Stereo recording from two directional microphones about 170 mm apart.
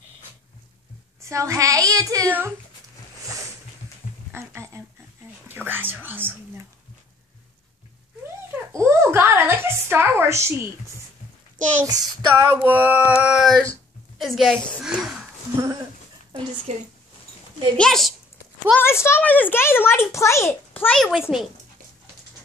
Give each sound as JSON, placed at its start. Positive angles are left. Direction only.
{"t": 1.2, "sound": "speech", "side_deg": -15}
{"t": 4.3, "sound": "speech", "side_deg": -15}
{"t": 5.5, "sound": "a sound", "side_deg": -10}
{"t": 8.5, "sound": "speech", "side_deg": -15}
{"t": 11.8, "sound": "speech", "side_deg": -20}
{"t": 12.5, "sound": "a sound", "side_deg": -10}
{"t": 14.1, "sound": "a woman's voice", "side_deg": 0}
{"t": 16.7, "sound": "speech", "side_deg": -40}
{"t": 17.7, "sound": "speech", "side_deg": 5}
{"t": 18.8, "sound": "a child's voice", "side_deg": 15}